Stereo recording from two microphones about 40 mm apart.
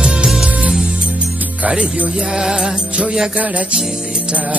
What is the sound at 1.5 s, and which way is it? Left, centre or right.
Music, right.